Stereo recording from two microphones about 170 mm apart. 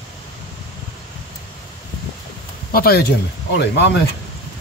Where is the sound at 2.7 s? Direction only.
60° left (ahead or behind).